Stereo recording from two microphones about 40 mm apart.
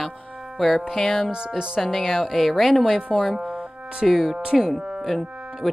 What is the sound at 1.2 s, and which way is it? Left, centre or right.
Speech, right.